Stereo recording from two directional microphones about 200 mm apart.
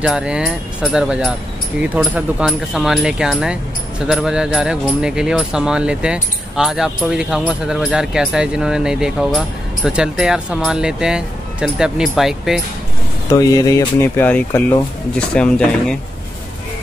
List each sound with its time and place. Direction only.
0.0 s speech: 5° right (ahead or behind)
13.3 s speech: 15° left (ahead or behind)